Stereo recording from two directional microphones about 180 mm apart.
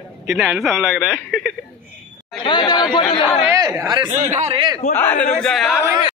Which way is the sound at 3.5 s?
15° right (ahead or behind).